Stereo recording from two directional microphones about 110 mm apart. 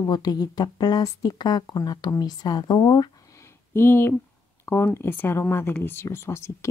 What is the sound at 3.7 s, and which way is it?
Speech, 20° left (ahead or behind).